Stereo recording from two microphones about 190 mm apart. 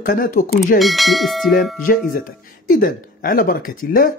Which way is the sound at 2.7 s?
50° left (ahead or behind).